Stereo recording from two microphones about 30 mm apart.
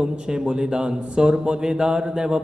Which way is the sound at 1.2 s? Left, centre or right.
Right.